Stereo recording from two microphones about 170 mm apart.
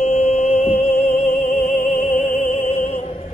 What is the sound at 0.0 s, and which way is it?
Music, 40° left (ahead or behind).